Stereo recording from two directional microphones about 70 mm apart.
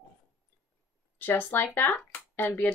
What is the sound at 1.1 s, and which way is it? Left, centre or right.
Speech, left.